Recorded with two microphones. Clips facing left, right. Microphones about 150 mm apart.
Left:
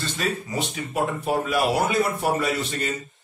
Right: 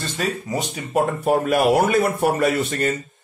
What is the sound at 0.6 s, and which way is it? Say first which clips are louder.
Speech: right 7 dB; 45° right (ahead or behind).